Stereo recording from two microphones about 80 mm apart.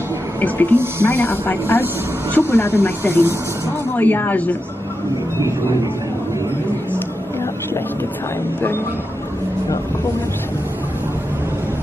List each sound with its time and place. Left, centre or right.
0.4 s speech: left
8.5 s speech: left